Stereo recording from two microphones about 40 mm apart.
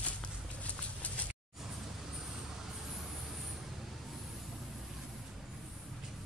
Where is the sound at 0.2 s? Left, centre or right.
Left.